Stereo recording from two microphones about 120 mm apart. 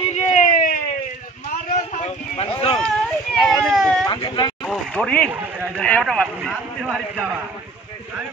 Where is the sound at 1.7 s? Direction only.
60° left (ahead or behind).